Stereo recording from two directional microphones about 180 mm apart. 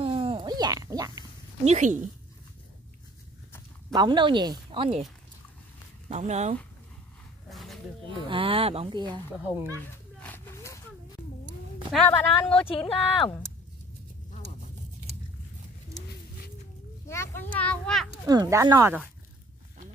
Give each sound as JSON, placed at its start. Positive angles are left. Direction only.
{"t": 0.0, "sound": "a sound", "side_deg": -30}
{"t": 1.6, "sound": "speech", "side_deg": -40}
{"t": 3.9, "sound": "speech", "side_deg": -25}
{"t": 6.0, "sound": "speech", "side_deg": -40}
{"t": 7.4, "sound": "wild animals", "side_deg": 0}
{"t": 8.3, "sound": "speech", "side_deg": -30}
{"t": 10.2, "sound": "a sound", "side_deg": 10}
{"t": 12.1, "sound": "speech", "side_deg": 10}
{"t": 12.6, "sound": "speech", "side_deg": 30}
{"t": 17.1, "sound": "speech", "side_deg": 15}
{"t": 18.2, "sound": "speech", "side_deg": -20}